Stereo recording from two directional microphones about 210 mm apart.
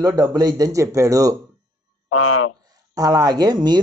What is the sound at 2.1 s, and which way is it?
Speech, 90° left.